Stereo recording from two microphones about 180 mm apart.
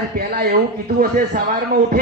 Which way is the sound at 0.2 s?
55° right (ahead or behind).